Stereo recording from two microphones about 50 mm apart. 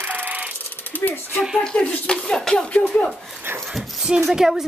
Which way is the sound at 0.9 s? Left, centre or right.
Left.